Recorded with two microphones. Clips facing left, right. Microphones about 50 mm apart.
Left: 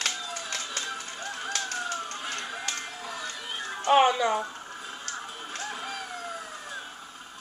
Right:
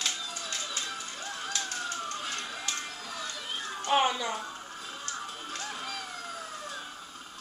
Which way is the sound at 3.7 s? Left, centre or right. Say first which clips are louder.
Left 6 dB; centre.